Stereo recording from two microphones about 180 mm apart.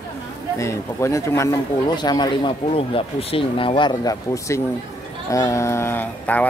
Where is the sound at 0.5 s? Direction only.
15° left (ahead or behind).